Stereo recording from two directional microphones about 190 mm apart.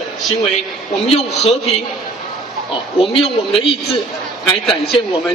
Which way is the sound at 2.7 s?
30° left (ahead or behind).